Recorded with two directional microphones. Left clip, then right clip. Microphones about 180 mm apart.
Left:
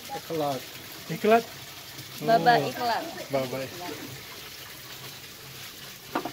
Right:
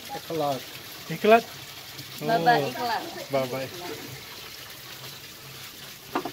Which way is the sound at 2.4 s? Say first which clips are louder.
Even; 65° left (ahead or behind).